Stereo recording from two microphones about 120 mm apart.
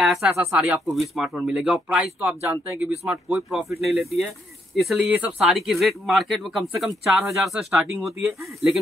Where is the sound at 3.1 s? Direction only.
15° right (ahead or behind).